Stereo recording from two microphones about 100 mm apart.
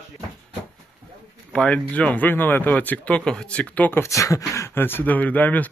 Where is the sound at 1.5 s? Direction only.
10° left (ahead or behind).